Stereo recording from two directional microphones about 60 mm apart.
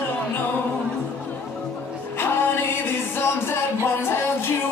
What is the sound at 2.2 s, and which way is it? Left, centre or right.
Music, left.